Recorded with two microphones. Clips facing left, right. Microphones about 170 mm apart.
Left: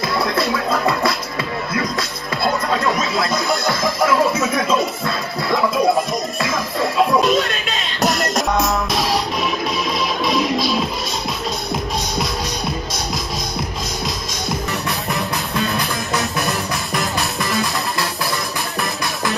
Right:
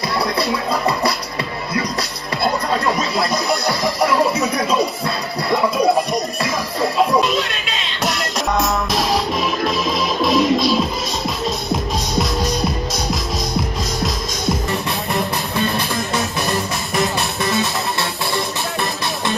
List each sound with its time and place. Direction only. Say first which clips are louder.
0.2 s music: even; centre (ahead or behind)
17.4 s music: right 3 dB; 25° right (ahead or behind)